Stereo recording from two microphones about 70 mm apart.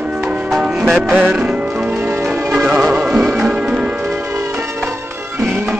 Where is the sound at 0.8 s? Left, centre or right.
Centre.